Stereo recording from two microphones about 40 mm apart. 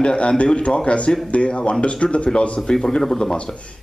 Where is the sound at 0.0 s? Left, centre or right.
Left.